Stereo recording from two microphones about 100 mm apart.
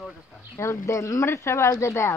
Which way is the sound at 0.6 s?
30° left (ahead or behind).